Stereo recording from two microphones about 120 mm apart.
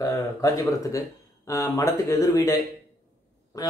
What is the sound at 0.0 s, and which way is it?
Speech, 30° left (ahead or behind).